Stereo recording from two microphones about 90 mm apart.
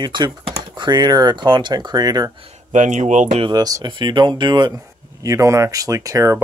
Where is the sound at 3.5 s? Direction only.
50° right (ahead or behind).